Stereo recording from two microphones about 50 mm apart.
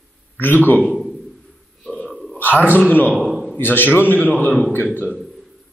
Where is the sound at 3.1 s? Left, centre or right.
Centre.